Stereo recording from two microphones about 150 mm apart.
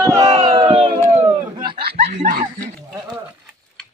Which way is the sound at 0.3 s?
40° right (ahead or behind).